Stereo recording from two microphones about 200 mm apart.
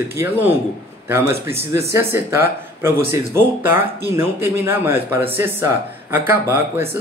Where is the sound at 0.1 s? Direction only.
10° right (ahead or behind).